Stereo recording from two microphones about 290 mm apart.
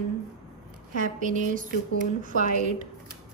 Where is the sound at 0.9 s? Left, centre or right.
Right.